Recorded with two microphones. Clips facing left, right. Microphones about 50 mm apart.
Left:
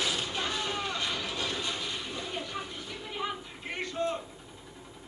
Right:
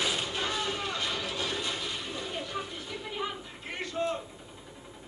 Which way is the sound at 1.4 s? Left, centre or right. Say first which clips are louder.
Right 1 dB; centre.